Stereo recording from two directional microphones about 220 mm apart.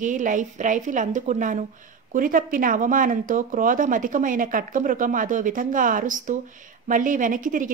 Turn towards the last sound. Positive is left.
turn(degrees=-35)  # may be behind; listen again after turning